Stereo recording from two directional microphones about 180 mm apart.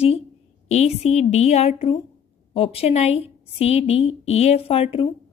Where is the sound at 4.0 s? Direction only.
90° left.